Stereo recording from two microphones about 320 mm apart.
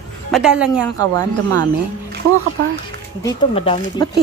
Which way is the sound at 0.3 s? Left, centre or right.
Centre.